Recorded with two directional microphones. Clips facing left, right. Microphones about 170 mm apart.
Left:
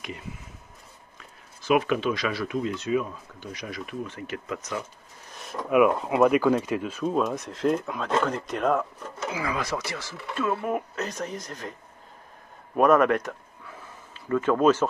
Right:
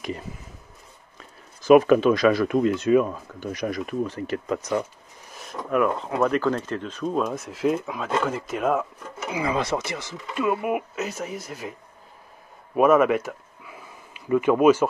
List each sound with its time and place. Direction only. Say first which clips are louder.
1.6 s speech: right 8 dB; 40° right (ahead or behind)
5.4 s speech: left 3 dB; centre (ahead or behind)
9.3 s speech: right 5 dB; 25° right (ahead or behind)
12.7 s speech: right 2 dB; 5° right (ahead or behind)